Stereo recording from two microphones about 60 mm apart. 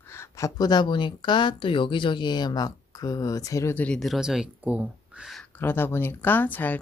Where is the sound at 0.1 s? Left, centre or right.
Left.